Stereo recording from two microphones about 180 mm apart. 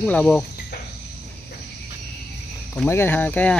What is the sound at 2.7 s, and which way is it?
Speech, 10° left (ahead or behind).